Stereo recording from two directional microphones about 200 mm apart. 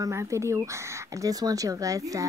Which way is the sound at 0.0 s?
15° right (ahead or behind).